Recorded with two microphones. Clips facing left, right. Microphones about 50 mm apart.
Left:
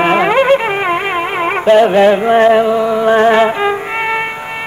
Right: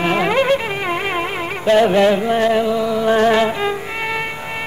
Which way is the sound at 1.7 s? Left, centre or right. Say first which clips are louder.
Left 4 dB; centre.